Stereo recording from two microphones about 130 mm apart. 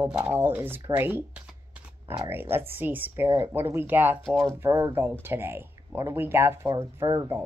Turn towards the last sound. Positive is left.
turn(degrees=-20)  # may be behind; listen again after turning